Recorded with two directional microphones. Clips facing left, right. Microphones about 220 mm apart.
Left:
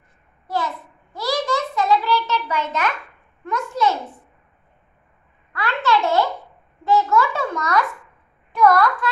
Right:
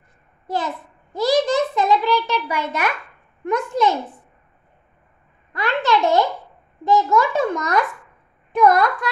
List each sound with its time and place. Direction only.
1.1 s a sound: 20° right (ahead or behind)
3.4 s a child's voice: 15° right (ahead or behind)
5.5 s a child's voice: 20° right (ahead or behind)